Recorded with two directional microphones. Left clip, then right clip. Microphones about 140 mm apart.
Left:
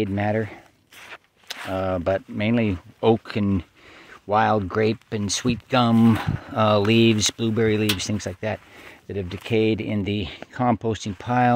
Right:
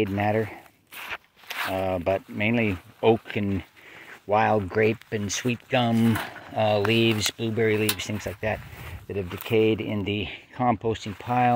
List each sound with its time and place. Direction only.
0.0 s speech: 30° left (ahead or behind)
0.9 s walk: 40° right (ahead or behind)
1.7 s speech: 40° left (ahead or behind)
6.5 s speech: 60° left (ahead or behind)